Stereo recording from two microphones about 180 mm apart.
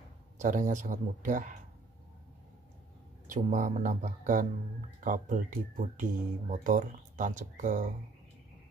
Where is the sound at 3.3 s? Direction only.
45° right (ahead or behind).